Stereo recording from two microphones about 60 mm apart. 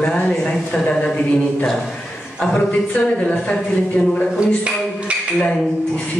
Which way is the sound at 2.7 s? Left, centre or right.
Left.